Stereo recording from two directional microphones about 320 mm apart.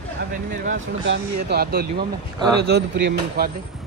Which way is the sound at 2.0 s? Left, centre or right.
Centre.